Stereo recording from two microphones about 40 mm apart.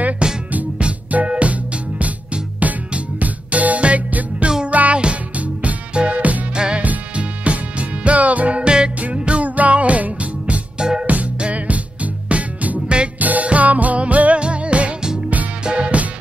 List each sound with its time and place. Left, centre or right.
0.2 s music: right
6.5 s music: right
6.8 s music: right
8.6 s music: right
10.8 s music: right
11.1 s music: right